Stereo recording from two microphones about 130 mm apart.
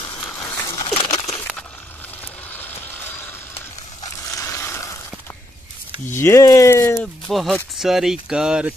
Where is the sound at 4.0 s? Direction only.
25° left (ahead or behind).